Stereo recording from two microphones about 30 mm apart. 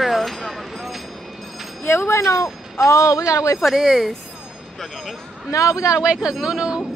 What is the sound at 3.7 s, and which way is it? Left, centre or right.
Speech, centre.